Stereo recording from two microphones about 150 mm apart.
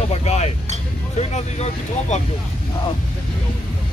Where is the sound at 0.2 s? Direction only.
45° left (ahead or behind).